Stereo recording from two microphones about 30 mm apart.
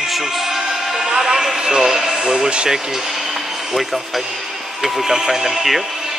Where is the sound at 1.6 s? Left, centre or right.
Right.